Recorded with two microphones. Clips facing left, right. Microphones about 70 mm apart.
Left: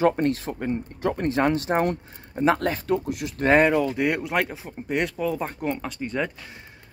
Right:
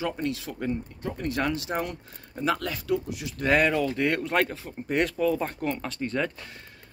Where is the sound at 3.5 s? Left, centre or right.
Left.